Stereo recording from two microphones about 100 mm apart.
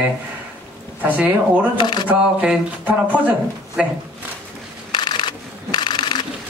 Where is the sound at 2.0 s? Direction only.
10° right (ahead or behind).